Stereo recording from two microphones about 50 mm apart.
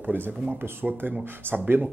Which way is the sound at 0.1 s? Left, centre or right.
Right.